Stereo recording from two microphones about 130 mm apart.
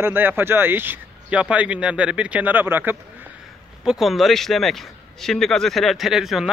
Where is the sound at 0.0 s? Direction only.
15° right (ahead or behind).